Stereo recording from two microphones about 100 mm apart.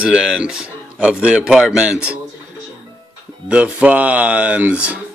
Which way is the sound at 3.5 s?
15° right (ahead or behind).